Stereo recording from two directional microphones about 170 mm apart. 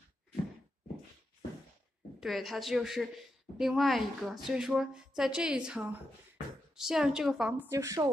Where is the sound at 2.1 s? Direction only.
Centre (ahead or behind).